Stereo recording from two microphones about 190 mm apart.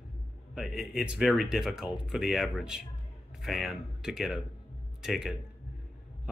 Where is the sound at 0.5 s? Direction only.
Centre (ahead or behind).